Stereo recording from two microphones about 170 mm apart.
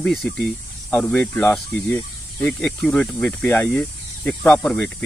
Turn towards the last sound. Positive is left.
turn(degrees=5)  # may be behind; listen again after turning